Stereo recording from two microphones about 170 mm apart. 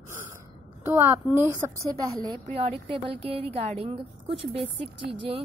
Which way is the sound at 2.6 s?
35° right (ahead or behind).